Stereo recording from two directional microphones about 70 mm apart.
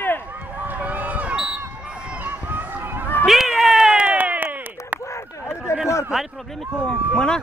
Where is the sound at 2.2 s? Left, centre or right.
Right.